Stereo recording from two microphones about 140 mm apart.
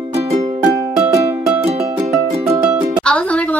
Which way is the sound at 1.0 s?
15° right (ahead or behind).